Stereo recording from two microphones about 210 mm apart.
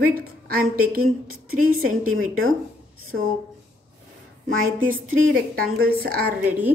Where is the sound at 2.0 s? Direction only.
80° right.